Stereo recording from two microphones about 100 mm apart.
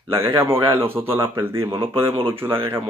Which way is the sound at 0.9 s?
65° right (ahead or behind).